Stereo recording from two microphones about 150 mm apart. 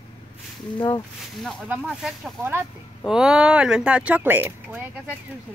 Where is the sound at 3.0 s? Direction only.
5° right (ahead or behind).